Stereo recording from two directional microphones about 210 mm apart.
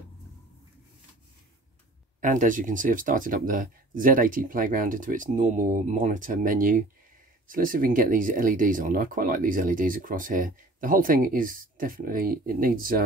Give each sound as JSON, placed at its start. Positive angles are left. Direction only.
{"t": 2.1, "sound": "speech", "side_deg": -35}